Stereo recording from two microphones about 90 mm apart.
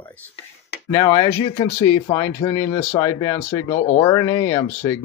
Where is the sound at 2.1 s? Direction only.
35° left (ahead or behind).